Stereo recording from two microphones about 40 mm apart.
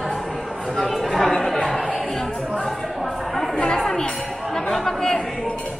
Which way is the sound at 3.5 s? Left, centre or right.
Centre.